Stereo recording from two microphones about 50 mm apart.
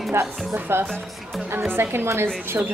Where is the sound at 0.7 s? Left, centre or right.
Right.